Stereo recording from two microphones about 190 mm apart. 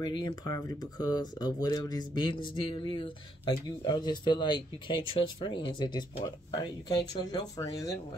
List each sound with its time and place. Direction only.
0.0 s speech: 25° left (ahead or behind)